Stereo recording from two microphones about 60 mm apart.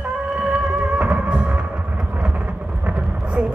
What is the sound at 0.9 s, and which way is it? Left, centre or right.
Music, right.